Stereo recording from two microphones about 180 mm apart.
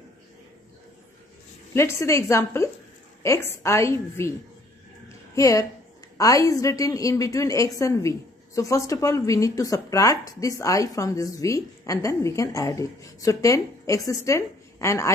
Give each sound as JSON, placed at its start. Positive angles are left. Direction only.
{"t": 1.7, "sound": "a woman's voice", "side_deg": 15}
{"t": 5.3, "sound": "a woman's voice", "side_deg": 20}